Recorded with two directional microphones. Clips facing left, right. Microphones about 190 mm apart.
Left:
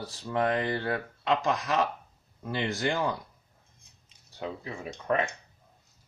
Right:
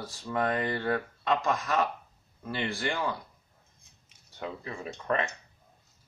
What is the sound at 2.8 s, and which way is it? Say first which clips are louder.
Speech: left 4 dB; 20° left (ahead or behind).